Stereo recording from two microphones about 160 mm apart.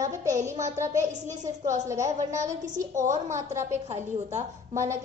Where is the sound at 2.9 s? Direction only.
50° right (ahead or behind).